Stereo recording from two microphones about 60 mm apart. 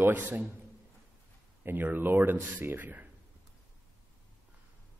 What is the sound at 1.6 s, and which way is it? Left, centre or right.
A man's voice, right.